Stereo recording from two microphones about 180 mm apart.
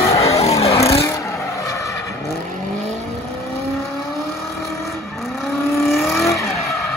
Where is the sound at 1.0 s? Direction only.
15° left (ahead or behind).